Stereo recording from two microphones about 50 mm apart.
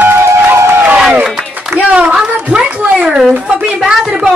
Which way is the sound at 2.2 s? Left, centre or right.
Centre.